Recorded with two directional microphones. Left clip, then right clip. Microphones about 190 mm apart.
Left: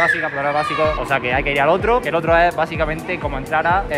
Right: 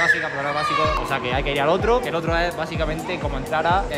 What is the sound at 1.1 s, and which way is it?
Speech, 10° right (ahead or behind).